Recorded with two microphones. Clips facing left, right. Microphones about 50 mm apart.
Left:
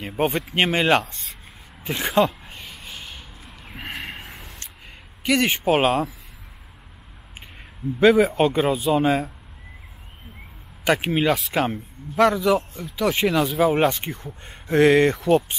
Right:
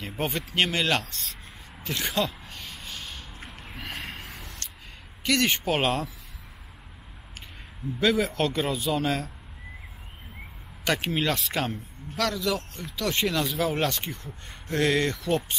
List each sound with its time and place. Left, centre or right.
0.2 s speech: centre
2.2 s a sound: centre
5.2 s speech: centre
8.0 s speech: centre
10.8 s speech: centre